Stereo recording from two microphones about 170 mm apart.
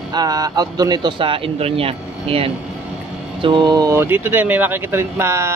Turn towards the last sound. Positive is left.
turn(degrees=-15)  # may be behind; listen again after turning